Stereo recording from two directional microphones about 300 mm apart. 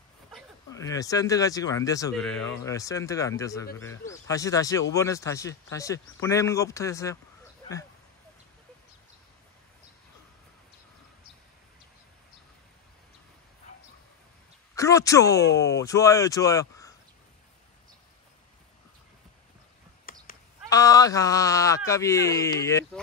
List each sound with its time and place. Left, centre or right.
0.7 s speech: centre
14.8 s speech: centre
20.1 s a sound: left
20.7 s speech: centre